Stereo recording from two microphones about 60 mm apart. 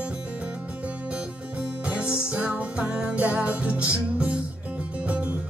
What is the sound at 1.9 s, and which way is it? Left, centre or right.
Music, centre.